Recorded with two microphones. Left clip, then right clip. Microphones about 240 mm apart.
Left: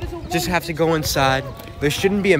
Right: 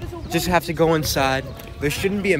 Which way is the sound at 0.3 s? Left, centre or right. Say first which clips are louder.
Right 1 dB; centre.